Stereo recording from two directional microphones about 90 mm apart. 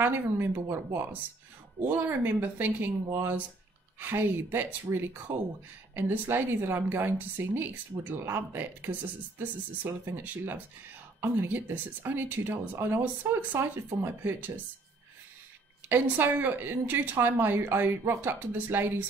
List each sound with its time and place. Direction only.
0.0 s a woman's voice: 25° right (ahead or behind)
15.9 s a woman's voice: 20° right (ahead or behind)